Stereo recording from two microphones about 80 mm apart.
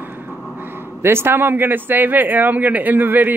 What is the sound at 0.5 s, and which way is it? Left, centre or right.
A man's voice, right.